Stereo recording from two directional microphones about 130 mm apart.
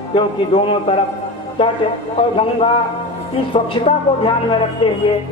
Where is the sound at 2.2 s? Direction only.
50° left (ahead or behind).